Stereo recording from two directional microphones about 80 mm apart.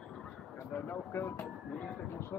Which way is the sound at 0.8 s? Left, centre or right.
Left.